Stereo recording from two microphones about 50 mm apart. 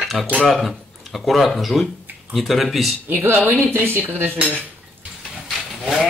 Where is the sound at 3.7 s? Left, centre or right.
Right.